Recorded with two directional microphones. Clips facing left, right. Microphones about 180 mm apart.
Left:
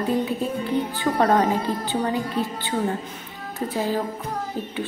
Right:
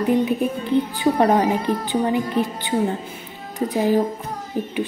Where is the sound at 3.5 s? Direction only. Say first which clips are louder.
Right 5 dB; 15° right (ahead or behind).